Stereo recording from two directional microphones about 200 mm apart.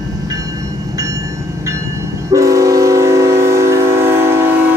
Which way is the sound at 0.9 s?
15° right (ahead or behind).